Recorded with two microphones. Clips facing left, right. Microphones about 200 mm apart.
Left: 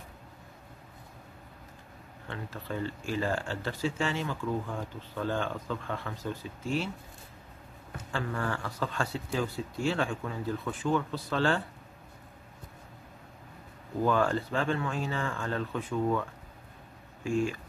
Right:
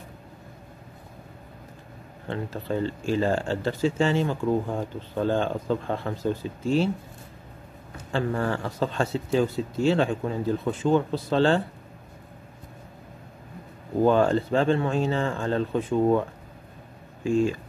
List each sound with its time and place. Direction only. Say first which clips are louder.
2.2 s speech: right 9 dB; 30° right (ahead or behind)
8.1 s speech: right 7 dB; 35° right (ahead or behind)
14.0 s speech: right 7 dB; 25° right (ahead or behind)